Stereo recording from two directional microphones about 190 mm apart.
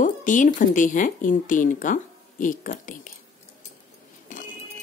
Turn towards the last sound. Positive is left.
turn(degrees=45)  # may be behind; listen again after turning